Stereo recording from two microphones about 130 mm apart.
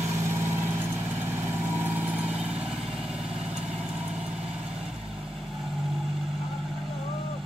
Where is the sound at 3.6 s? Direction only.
10° right (ahead or behind).